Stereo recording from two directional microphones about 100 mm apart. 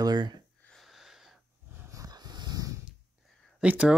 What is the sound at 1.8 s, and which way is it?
Dog, 35° right (ahead or behind).